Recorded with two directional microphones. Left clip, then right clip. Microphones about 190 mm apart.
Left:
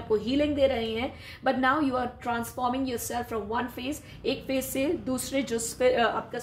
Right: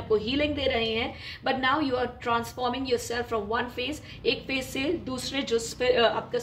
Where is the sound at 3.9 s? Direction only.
45° left (ahead or behind).